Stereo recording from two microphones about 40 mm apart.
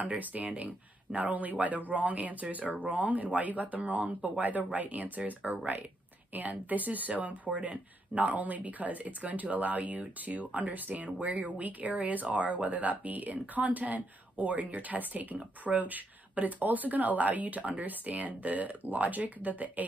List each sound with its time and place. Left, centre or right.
0.2 s speech: right